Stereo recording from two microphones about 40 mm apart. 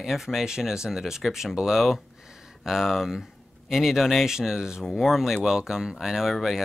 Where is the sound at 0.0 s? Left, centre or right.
Centre.